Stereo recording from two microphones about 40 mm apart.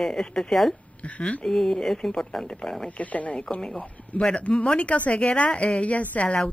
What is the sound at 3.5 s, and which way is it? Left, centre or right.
Speech, left.